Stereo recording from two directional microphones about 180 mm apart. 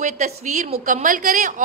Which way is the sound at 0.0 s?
40° right (ahead or behind).